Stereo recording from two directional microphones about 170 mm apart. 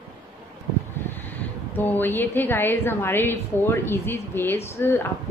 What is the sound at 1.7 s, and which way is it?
A woman's voice, 10° left (ahead or behind).